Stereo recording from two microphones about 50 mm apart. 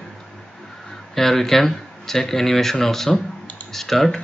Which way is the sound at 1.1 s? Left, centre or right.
Centre.